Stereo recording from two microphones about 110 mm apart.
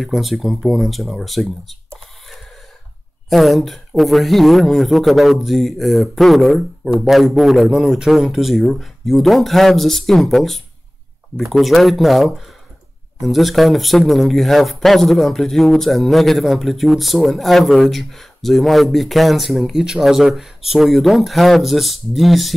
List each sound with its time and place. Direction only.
0.0 s speech: centre (ahead or behind)
3.3 s speech: centre (ahead or behind)